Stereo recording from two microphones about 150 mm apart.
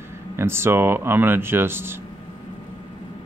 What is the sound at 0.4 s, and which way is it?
Speech, 15° right (ahead or behind).